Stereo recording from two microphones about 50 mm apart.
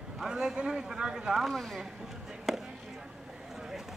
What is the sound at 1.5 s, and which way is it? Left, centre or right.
Speech, centre.